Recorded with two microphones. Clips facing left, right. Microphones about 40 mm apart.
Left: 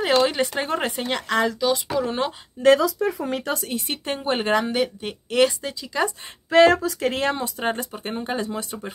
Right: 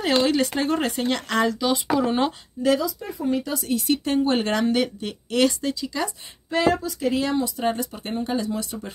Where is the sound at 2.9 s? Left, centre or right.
Left.